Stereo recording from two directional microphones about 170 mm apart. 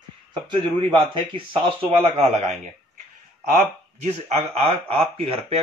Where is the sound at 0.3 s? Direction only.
30° right (ahead or behind).